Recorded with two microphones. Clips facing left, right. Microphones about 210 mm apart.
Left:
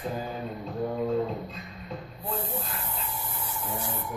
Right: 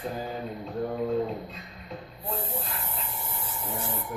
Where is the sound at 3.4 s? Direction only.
25° right (ahead or behind).